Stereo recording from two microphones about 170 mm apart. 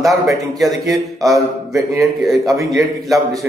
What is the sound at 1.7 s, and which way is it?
Speech, 20° right (ahead or behind).